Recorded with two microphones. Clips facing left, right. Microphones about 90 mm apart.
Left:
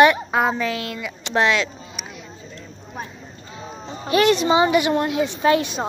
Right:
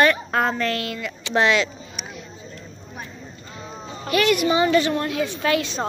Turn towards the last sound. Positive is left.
turn(degrees=25)  # may be behind; listen again after turning